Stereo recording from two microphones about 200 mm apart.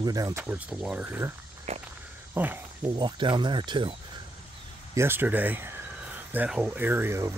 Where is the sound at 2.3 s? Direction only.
10° right (ahead or behind).